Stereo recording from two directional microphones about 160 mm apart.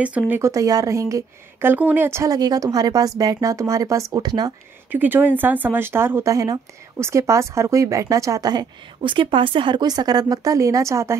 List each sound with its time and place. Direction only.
0.0 s speech: 10° right (ahead or behind); by 4.5 s 25° right (ahead or behind)
4.9 s speech: 10° right (ahead or behind)